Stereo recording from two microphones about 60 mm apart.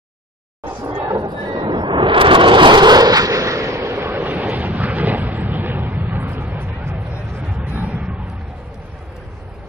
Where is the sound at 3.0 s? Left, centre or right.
Right.